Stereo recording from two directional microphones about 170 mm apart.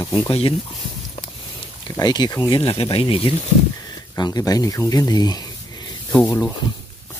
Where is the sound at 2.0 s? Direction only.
25° left (ahead or behind).